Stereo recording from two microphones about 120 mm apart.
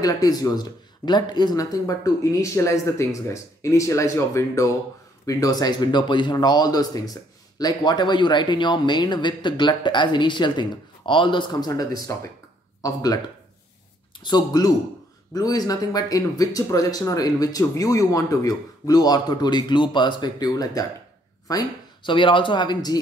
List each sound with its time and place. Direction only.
0.0 s speech: 30° left (ahead or behind)
11.7 s speech: 30° left (ahead or behind)
14.2 s speech: 35° left (ahead or behind)
21.5 s a sound: 30° left (ahead or behind)
22.1 s speech: 45° left (ahead or behind)